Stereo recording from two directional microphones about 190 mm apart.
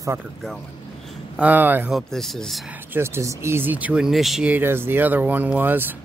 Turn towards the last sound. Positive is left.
turn(degrees=-10)  # may be behind; listen again after turning